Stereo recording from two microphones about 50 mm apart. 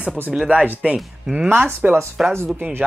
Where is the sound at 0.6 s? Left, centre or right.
Right.